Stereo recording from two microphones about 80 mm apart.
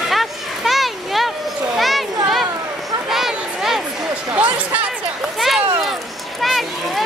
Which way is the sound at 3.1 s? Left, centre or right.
Centre.